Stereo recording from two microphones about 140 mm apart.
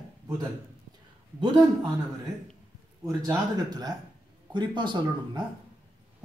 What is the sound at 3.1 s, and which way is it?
Speech, 25° right (ahead or behind).